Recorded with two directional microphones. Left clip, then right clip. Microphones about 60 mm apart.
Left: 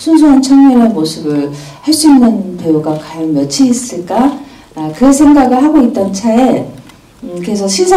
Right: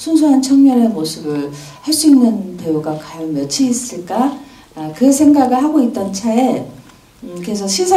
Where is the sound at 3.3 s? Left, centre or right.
Right.